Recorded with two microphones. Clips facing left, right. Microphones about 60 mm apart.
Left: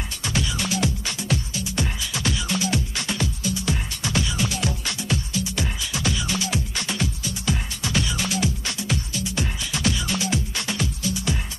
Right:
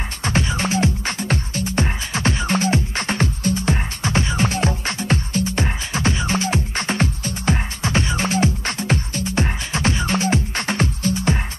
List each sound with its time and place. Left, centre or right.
0.2 s music: right